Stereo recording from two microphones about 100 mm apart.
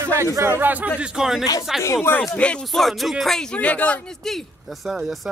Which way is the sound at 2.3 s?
10° left (ahead or behind).